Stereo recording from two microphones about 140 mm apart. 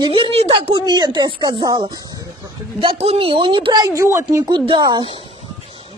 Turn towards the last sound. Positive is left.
turn(degrees=-35)  # may be behind; listen again after turning